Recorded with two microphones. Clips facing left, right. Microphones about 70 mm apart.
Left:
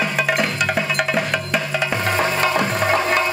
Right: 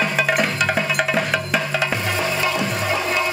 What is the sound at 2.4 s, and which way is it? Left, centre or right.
Music, left.